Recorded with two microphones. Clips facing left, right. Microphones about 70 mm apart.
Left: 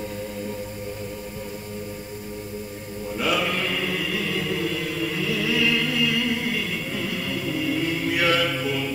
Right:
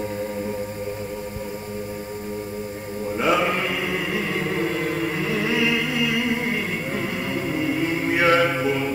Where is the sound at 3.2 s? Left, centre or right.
Right.